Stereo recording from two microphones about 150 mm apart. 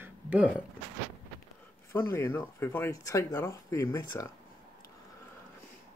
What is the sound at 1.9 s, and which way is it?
Speech, 15° left (ahead or behind).